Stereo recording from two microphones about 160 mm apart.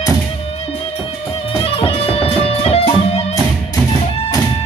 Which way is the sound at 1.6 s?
35° left (ahead or behind).